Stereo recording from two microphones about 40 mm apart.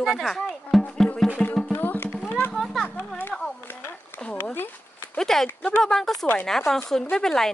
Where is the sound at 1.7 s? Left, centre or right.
Left.